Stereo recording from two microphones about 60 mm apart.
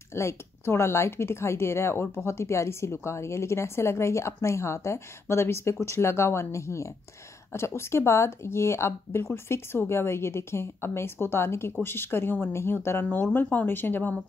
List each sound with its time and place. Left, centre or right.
0.1 s speech: left